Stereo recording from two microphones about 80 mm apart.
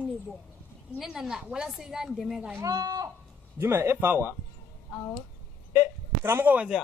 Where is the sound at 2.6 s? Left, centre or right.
Right.